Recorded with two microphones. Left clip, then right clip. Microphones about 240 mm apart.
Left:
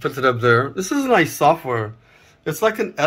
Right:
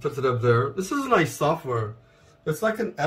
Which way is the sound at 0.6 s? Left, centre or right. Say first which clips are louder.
Left 5 dB; centre.